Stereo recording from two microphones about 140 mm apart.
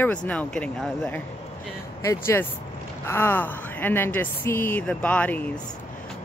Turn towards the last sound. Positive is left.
turn(degrees=10)  # may be behind; listen again after turning